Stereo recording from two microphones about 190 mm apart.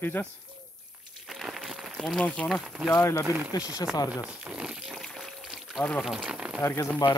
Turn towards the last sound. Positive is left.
turn(degrees=10)  # may be behind; listen again after turning